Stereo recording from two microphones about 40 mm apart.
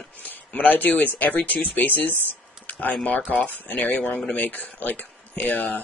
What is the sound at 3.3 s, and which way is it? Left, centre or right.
Speech, left.